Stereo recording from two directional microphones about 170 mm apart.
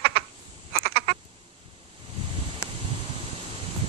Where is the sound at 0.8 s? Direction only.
65° right (ahead or behind).